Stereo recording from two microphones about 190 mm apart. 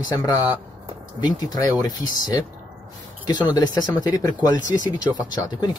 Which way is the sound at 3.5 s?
20° left (ahead or behind).